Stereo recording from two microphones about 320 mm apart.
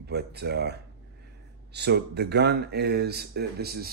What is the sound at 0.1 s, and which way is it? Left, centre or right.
Speech, right.